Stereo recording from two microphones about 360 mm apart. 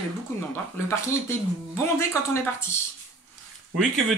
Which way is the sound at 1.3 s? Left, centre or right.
Centre.